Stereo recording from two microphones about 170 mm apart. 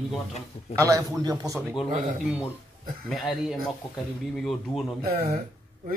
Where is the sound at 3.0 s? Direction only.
Centre (ahead or behind).